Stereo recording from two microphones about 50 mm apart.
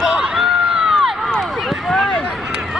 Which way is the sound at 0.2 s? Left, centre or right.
Centre.